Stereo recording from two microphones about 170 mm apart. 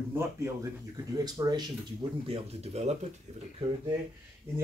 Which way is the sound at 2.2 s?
35° right (ahead or behind).